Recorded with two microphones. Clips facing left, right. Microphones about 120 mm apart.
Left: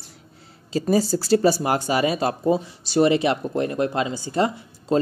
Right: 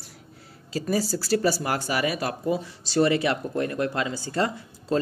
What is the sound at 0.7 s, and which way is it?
Speech, 25° left (ahead or behind).